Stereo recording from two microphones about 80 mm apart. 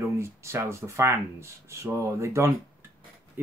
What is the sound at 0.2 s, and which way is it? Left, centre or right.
Speech, right.